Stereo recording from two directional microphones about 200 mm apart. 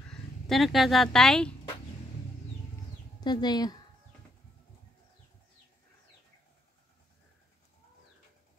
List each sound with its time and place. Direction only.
0.1 s speech: centre (ahead or behind)
3.2 s speech: 20° left (ahead or behind)